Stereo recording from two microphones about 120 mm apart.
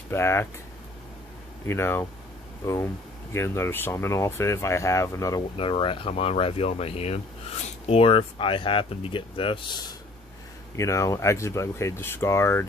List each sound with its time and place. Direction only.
0.1 s speech: 20° left (ahead or behind)
1.7 s speech: 20° left (ahead or behind)
5.6 s speech: 45° left (ahead or behind)
10.8 s speech: 25° left (ahead or behind)